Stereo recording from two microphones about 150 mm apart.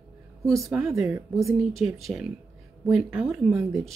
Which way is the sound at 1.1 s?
20° right (ahead or behind).